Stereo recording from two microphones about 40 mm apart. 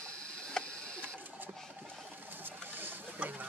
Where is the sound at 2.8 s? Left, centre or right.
Right.